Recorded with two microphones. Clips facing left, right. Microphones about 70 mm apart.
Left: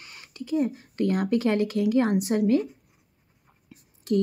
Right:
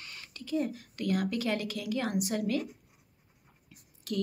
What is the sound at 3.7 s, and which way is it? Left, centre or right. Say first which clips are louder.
Whispering: left 11 dB; left.